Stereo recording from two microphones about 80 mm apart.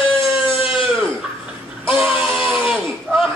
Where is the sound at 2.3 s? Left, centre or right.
Centre.